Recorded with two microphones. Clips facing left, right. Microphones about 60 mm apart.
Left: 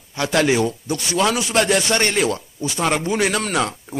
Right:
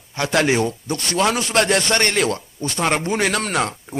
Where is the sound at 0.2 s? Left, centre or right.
Centre.